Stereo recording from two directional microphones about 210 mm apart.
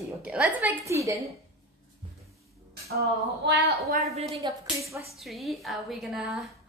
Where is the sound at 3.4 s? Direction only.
55° right (ahead or behind).